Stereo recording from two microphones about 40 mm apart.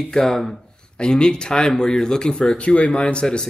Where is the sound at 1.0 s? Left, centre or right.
Left.